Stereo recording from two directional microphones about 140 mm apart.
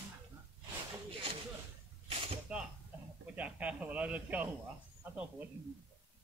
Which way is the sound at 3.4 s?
10° right (ahead or behind).